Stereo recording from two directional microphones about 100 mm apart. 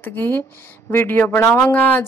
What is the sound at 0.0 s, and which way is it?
Speech, 20° left (ahead or behind).